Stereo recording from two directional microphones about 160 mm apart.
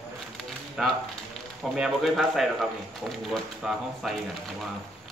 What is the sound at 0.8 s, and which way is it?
Speech, 5° right (ahead or behind).